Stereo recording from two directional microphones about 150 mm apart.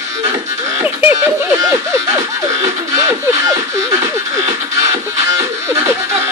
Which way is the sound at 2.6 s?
20° right (ahead or behind).